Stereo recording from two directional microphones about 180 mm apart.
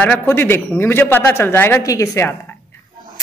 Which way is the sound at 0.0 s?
10° left (ahead or behind).